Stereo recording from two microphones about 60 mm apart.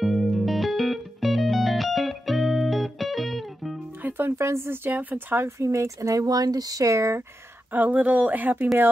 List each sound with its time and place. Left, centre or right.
0.0 s music: centre
4.0 s music: right
4.4 s speech: right
4.9 s speech: right
5.4 s speech: right
7.7 s speech: right